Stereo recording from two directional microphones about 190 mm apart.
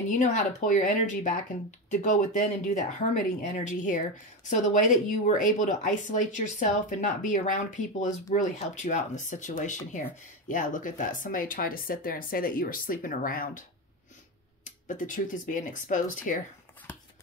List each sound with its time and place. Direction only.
0.1 s speech: 40° left (ahead or behind)
14.9 s speech: 45° left (ahead or behind)